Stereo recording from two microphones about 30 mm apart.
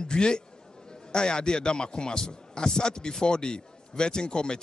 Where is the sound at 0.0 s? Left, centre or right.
Left.